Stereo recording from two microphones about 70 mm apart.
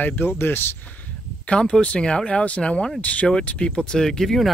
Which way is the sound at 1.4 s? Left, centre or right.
Centre.